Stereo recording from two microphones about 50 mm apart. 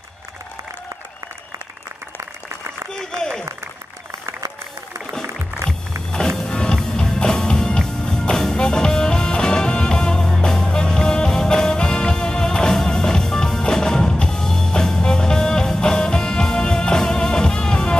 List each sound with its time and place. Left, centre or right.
2.9 s applause: centre
6.1 s music: centre